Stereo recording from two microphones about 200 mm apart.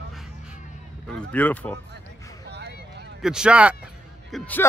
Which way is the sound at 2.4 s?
55° right (ahead or behind).